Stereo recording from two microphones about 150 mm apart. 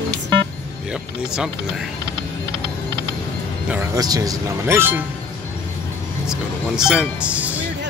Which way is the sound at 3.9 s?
25° right (ahead or behind).